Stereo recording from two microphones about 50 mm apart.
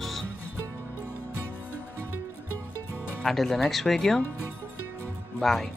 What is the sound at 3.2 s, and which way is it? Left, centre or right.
Speech, centre.